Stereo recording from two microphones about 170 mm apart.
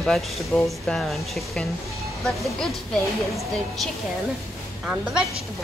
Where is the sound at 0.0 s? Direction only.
Centre (ahead or behind).